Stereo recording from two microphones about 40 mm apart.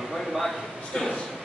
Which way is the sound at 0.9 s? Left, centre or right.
Centre.